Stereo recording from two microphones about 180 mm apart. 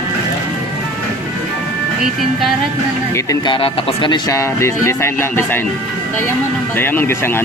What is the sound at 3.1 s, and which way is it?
Speech, 20° left (ahead or behind).